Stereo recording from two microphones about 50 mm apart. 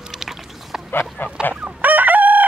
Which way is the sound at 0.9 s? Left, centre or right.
Left.